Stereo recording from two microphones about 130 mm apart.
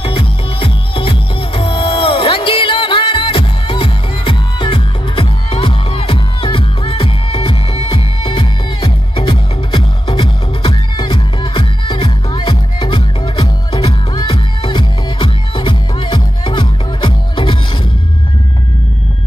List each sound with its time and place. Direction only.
0.0 s music: 45° left (ahead or behind)